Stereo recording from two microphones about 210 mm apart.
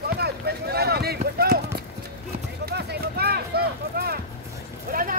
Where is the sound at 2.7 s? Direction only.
50° right (ahead or behind).